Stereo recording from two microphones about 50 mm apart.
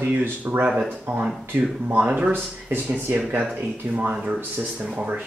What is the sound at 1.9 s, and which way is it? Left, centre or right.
Speech, right.